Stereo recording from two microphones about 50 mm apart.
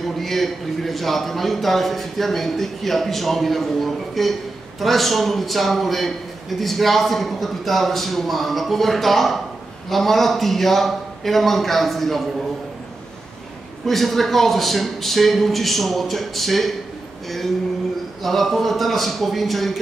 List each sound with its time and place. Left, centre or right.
0.2 s a man's voice: centre
13.8 s a man's voice: centre
18.2 s a man's voice: centre